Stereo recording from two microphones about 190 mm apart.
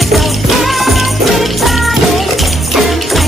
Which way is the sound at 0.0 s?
Centre (ahead or behind).